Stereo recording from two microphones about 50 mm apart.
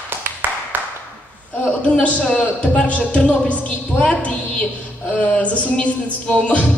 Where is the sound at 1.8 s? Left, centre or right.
Left.